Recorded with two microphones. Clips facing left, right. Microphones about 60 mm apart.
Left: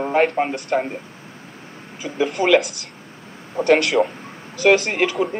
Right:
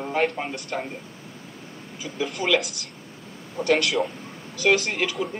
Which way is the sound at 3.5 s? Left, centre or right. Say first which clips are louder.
Left 6 dB; left.